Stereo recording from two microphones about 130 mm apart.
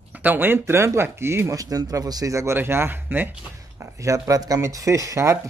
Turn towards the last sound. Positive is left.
turn(degrees=-20)  # may be behind; listen again after turning